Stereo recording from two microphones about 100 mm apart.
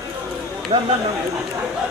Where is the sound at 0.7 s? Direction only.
60° right (ahead or behind).